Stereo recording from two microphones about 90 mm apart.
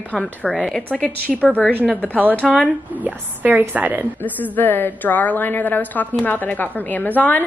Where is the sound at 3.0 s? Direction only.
20° right (ahead or behind).